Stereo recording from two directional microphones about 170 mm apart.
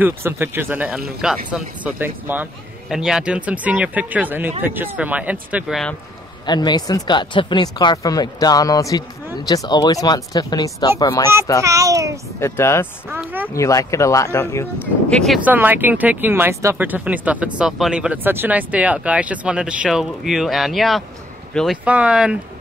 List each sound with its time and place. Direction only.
0.0 s speech: 15° right (ahead or behind)
6.4 s speech: 25° left (ahead or behind)
11.6 s a sound: 20° right (ahead or behind)
12.4 s speech: 15° left (ahead or behind)
13.1 s speech: 10° right (ahead or behind)
13.6 s speech: 20° left (ahead or behind)
15.4 s speech: 10° right (ahead or behind)